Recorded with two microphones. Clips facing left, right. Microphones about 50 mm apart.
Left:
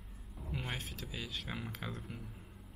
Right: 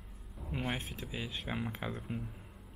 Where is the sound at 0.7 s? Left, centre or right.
Right.